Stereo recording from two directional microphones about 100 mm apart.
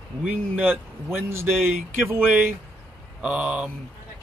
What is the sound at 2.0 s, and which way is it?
Speech, 20° right (ahead or behind).